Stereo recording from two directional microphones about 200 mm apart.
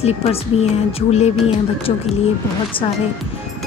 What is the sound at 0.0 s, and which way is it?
Speech, 30° left (ahead or behind).